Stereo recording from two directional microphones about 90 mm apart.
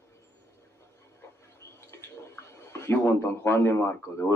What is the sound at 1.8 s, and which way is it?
Speech, 30° left (ahead or behind).